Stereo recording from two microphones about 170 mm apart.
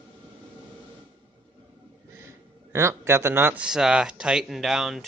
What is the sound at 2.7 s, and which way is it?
Speech, 15° right (ahead or behind).